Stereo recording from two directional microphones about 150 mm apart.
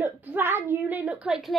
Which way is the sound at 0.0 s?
10° right (ahead or behind).